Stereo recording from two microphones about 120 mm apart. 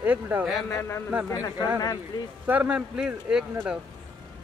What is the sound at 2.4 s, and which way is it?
A man's voice, 10° right (ahead or behind).